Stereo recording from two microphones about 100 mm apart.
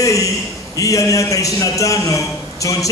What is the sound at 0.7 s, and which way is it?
A man's voice, 35° left (ahead or behind).